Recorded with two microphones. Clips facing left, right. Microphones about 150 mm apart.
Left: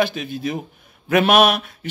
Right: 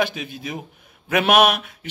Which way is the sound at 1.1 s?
5° right (ahead or behind).